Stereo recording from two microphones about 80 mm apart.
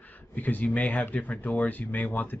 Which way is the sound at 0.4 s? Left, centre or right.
Left.